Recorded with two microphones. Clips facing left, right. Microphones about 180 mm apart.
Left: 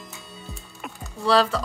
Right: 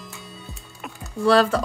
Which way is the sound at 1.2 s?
55° right (ahead or behind).